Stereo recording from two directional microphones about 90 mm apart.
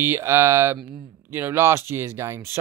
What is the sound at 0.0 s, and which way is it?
Speech, 25° right (ahead or behind).